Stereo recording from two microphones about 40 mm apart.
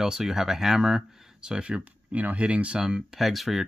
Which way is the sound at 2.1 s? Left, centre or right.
Right.